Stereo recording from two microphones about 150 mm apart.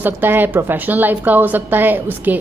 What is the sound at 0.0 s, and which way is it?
A woman's voice, 15° right (ahead or behind).